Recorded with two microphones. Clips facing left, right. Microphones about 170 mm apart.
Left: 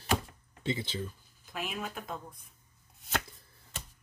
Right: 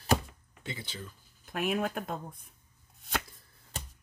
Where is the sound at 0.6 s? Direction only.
25° left (ahead or behind).